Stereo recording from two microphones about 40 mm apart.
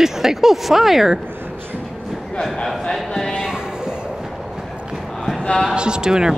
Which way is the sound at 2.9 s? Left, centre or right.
Centre.